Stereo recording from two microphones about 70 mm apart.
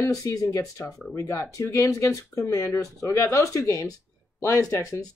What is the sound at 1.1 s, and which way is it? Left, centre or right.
Speech, left.